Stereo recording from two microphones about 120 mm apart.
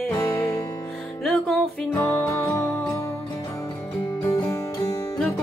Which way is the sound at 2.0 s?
20° left (ahead or behind).